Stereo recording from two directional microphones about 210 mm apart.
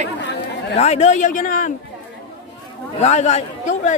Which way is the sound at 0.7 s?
30° left (ahead or behind).